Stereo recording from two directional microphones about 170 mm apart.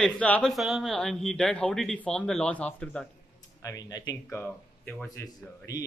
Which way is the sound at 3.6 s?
20° left (ahead or behind).